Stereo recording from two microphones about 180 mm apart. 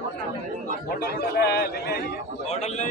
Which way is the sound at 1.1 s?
65° left (ahead or behind).